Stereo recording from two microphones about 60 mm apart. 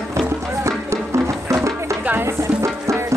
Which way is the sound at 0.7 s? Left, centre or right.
Right.